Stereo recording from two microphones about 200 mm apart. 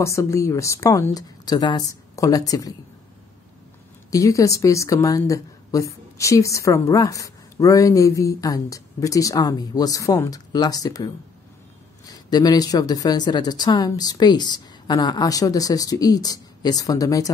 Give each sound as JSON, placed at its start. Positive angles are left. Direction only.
{"t": 0.0, "sound": "a woman's voice", "side_deg": 15}
{"t": 4.1, "sound": "a woman's voice", "side_deg": 15}
{"t": 12.1, "sound": "speech", "side_deg": 20}